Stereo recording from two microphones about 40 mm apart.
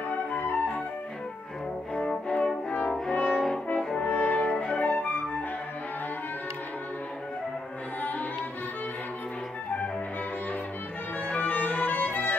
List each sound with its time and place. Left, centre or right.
0.1 s flute: left
2.0 s music: left
3.1 s brass instrument: left
11.2 s music: left